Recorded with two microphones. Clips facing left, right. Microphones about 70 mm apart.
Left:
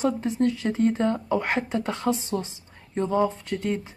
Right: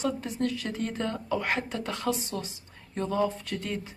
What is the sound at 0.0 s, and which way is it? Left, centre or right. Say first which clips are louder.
Speech: left 6 dB; left.